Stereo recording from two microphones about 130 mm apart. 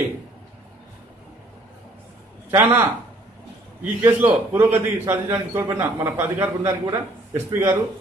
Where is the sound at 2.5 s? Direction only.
20° right (ahead or behind).